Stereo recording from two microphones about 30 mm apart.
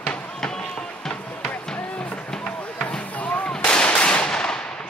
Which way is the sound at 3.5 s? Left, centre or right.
Left.